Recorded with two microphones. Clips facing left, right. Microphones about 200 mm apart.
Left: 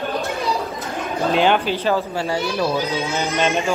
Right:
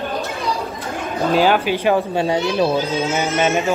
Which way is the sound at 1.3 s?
5° right (ahead or behind).